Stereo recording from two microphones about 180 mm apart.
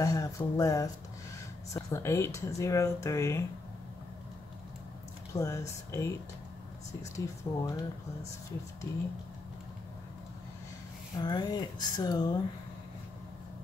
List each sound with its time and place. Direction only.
0.0 s speech: 20° left (ahead or behind)
5.3 s speech: 20° left (ahead or behind)
11.1 s speech: 25° left (ahead or behind)